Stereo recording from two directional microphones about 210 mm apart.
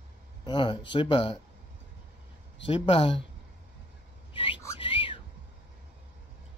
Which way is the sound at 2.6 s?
25° left (ahead or behind).